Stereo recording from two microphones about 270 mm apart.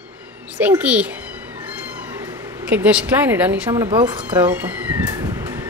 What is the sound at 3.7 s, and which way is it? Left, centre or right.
Speech, centre.